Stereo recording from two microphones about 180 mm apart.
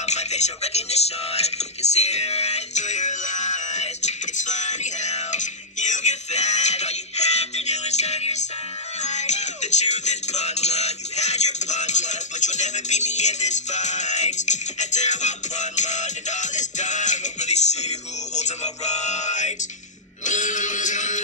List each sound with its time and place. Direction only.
0.0 s music: 40° left (ahead or behind)